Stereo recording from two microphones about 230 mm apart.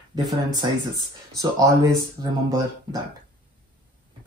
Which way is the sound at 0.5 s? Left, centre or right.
Centre.